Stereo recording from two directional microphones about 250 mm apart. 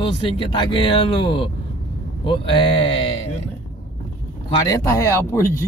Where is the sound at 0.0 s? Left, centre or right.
Centre.